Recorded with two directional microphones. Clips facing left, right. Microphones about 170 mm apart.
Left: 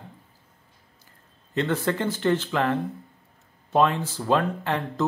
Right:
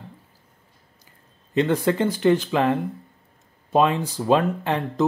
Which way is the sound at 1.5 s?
15° right (ahead or behind).